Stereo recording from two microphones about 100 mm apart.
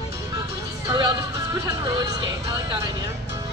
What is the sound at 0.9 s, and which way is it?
Speech, 45° right (ahead or behind).